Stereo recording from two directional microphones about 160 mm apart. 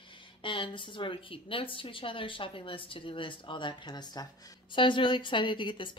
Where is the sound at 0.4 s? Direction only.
30° left (ahead or behind).